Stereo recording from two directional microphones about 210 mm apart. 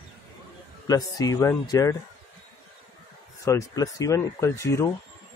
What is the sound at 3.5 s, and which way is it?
Speech, 15° left (ahead or behind).